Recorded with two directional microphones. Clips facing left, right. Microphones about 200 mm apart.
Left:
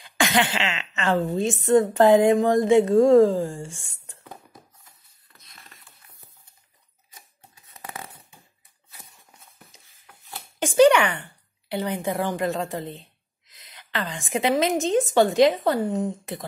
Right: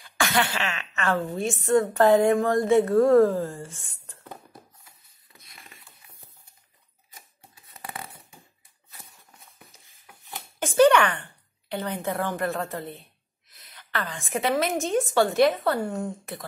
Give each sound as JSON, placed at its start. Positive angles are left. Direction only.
{"t": 0.0, "sound": "a woman's voice", "side_deg": 20}
{"t": 9.8, "sound": "wood", "side_deg": -15}
{"t": 10.6, "sound": "a sound", "side_deg": 10}
{"t": 11.7, "sound": "a woman's voice", "side_deg": 10}